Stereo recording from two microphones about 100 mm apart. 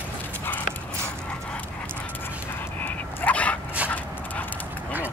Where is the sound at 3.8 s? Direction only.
15° left (ahead or behind).